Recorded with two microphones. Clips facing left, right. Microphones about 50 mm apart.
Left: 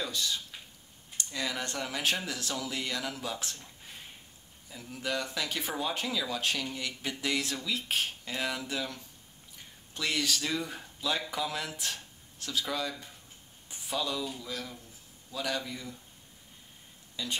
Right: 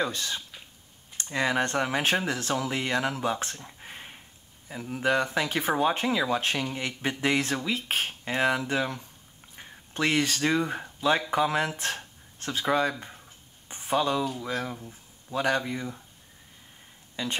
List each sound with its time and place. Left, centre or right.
0.0 s speech: right
13.7 s a sound: right
14.4 s speech: right
17.1 s speech: right